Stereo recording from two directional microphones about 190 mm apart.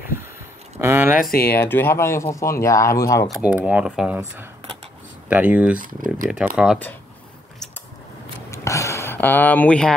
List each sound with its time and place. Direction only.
0.7 s a sound: 10° right (ahead or behind)
1.3 s speech: 55° left (ahead or behind)
1.6 s speech: 10° left (ahead or behind)
3.5 s speech: 5° right (ahead or behind)
5.3 s speech: 5° right (ahead or behind)
5.8 s speech: 45° right (ahead or behind)
6.3 s speech: centre (ahead or behind)
8.5 s a sound: 15° left (ahead or behind)